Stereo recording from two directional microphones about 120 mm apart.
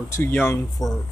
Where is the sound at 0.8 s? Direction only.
Centre (ahead or behind).